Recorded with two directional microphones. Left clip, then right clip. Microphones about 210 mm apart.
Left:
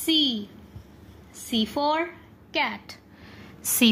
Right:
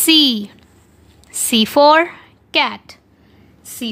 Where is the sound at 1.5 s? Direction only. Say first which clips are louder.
Right 14 dB; 55° right (ahead or behind).